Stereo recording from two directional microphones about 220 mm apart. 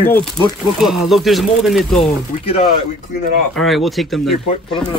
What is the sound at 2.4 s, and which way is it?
Speech, 25° left (ahead or behind).